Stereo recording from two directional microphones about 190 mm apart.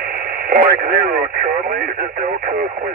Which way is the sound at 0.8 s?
50° right (ahead or behind).